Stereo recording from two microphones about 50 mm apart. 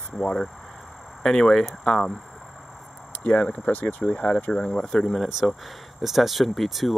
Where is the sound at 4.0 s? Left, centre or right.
Left.